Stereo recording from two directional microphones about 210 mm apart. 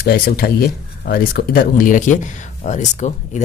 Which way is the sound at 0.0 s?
45° left (ahead or behind).